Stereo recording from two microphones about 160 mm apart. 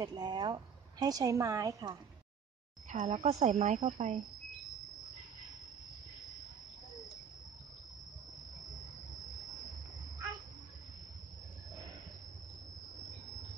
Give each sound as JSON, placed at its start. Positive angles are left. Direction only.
{"t": 0.0, "sound": "a woman's voice", "side_deg": -25}
{"t": 2.9, "sound": "a woman's voice", "side_deg": -45}